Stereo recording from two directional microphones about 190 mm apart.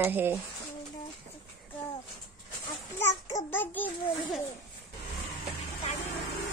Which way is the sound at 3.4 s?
10° left (ahead or behind).